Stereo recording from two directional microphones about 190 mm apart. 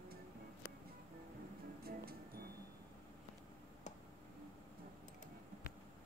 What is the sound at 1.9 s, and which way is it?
Music, 50° right (ahead or behind).